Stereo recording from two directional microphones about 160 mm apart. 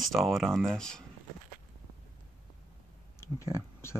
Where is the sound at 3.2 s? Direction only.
15° left (ahead or behind).